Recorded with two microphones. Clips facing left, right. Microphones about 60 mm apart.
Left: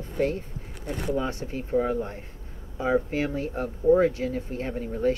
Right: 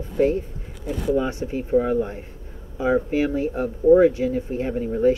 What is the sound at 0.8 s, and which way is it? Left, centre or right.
Speech, left.